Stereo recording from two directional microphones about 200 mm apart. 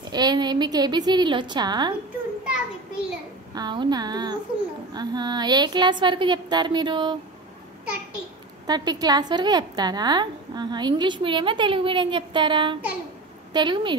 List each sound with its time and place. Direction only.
0.1 s a woman's voice: 20° right (ahead or behind)
2.4 s a sound: 5° right (ahead or behind)
3.5 s a woman's voice: 20° right (ahead or behind)
8.6 s a woman's voice: 20° right (ahead or behind)